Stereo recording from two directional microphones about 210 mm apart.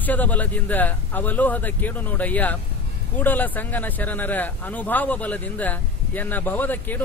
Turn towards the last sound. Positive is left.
turn(degrees=10)  # may be behind; listen again after turning